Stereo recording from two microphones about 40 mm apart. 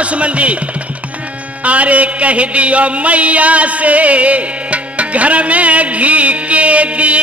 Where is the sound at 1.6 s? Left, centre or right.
Right.